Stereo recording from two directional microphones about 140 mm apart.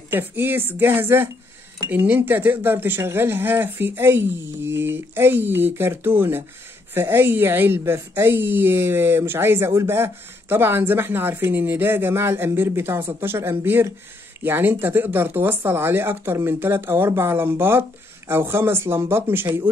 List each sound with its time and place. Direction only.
0.1 s a woman's voice: 15° right (ahead or behind)